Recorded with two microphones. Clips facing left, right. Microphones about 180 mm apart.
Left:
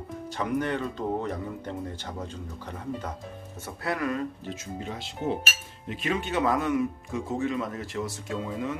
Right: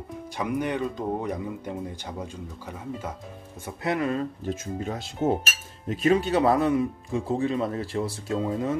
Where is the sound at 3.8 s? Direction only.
20° right (ahead or behind).